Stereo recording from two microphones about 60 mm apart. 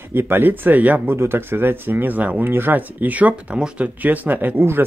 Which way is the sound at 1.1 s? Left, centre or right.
Right.